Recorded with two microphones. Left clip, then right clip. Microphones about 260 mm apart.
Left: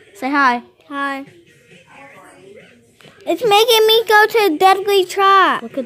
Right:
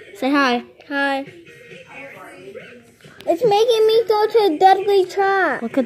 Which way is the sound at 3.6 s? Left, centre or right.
Left.